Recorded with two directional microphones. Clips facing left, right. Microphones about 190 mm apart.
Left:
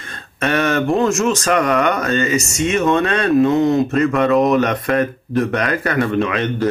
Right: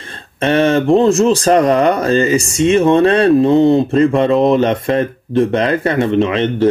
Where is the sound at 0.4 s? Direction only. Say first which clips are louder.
Right 5 dB; 30° right (ahead or behind).